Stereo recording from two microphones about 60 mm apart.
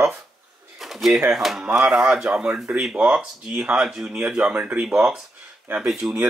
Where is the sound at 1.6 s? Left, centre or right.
Centre.